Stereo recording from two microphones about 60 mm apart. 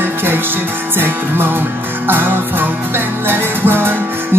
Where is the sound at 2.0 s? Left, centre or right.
Right.